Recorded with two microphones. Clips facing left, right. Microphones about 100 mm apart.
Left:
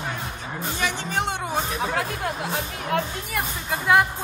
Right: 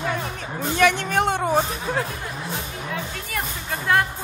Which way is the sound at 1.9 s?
65° left (ahead or behind).